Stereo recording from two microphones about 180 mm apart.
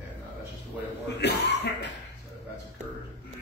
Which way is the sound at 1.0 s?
70° left (ahead or behind).